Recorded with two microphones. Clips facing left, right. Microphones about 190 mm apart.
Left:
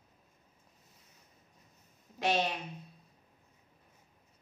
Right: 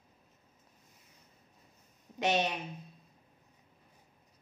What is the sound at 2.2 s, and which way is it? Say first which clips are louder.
Speech: right 1 dB; 20° right (ahead or behind).